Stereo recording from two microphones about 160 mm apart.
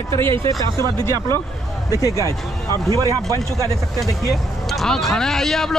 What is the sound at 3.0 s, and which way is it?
Speech, 20° right (ahead or behind).